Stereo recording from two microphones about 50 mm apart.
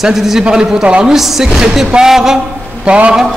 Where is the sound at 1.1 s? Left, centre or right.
Centre.